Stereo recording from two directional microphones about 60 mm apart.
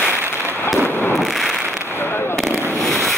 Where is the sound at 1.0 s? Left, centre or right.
Centre.